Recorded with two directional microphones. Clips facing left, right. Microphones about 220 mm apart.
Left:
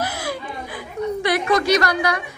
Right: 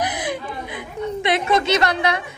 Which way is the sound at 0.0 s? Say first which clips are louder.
Right 2 dB; 20° right (ahead or behind).